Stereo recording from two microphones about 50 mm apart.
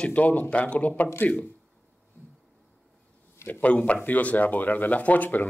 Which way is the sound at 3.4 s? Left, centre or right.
Left.